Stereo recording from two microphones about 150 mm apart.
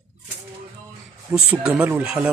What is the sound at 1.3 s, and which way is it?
Speech, 5° right (ahead or behind).